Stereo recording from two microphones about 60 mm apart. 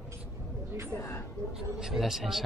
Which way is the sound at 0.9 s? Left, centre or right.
Left.